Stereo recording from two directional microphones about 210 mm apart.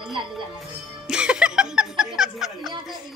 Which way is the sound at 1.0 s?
5° right (ahead or behind).